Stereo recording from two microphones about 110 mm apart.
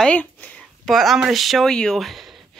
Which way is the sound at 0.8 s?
Centre (ahead or behind).